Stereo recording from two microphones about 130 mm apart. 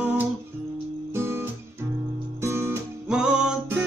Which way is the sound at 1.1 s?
20° right (ahead or behind).